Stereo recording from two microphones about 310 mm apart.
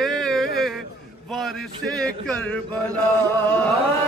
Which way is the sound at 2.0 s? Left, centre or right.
Centre.